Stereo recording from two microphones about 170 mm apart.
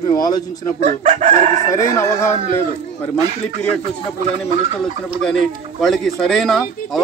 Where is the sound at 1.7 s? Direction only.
15° left (ahead or behind).